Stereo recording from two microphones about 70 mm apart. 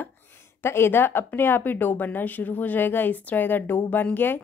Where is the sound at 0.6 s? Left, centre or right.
Left.